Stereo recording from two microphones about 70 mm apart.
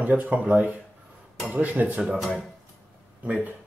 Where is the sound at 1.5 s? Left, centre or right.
Right.